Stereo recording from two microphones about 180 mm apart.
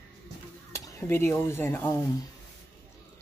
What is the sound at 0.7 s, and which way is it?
Speech, 15° left (ahead or behind).